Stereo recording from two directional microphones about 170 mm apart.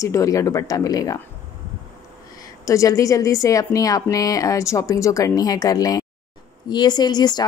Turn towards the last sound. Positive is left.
turn(degrees=25)  # may be behind; listen again after turning